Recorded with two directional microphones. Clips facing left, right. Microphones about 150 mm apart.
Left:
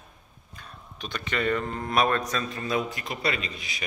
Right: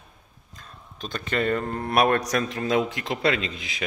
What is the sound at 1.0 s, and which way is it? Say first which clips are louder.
A man's voice: right 3 dB; 45° right (ahead or behind).